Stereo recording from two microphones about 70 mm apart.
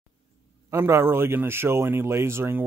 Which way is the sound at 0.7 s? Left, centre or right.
Right.